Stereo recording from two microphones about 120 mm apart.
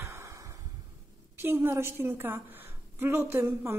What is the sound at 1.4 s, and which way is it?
A woman's voice, 20° right (ahead or behind).